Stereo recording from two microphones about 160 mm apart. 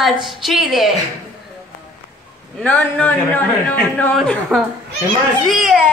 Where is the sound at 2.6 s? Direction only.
10° left (ahead or behind).